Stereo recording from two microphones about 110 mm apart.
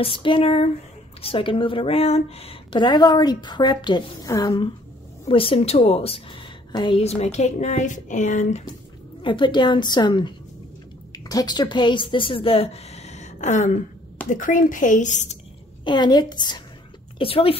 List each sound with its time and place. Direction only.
0.0 s speech: 50° left (ahead or behind)
2.8 s a woman's voice: 40° left (ahead or behind)
5.3 s speech: 55° left (ahead or behind)
6.7 s a woman's voice: 45° left (ahead or behind)
7.0 s a woman's voice: 75° left (ahead or behind)
9.2 s a woman's voice: 45° left (ahead or behind); by 13.7 s 90° left
15.0 s a woman's voice: 90° left
15.8 s a woman's voice: 40° left (ahead or behind)
17.2 s speech: 55° left (ahead or behind)